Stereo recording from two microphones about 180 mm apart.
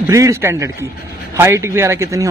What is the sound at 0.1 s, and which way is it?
A man's voice, 15° right (ahead or behind).